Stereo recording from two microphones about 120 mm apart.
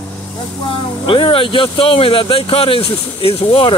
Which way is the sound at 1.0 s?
45° left (ahead or behind).